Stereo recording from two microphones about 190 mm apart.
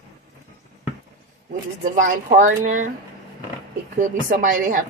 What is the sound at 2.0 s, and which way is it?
Speech, 45° right (ahead or behind).